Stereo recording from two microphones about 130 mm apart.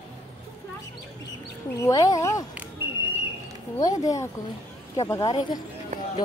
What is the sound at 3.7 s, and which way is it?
A woman's voice, 30° left (ahead or behind).